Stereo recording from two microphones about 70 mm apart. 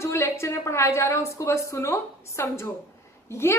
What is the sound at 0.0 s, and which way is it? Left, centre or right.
A woman's voice, left.